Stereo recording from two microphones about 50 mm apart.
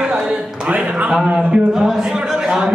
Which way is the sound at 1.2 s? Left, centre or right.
Right.